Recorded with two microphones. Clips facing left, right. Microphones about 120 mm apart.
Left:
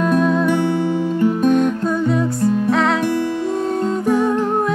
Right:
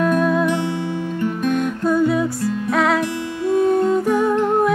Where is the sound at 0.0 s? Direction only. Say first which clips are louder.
Left 1 dB; centre (ahead or behind).